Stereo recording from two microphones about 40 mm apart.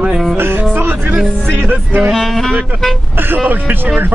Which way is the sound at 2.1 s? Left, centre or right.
Centre.